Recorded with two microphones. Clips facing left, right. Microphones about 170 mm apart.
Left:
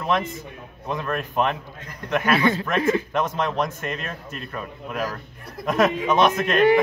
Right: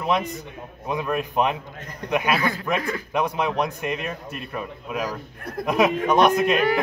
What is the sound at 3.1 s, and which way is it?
Speech, 10° right (ahead or behind).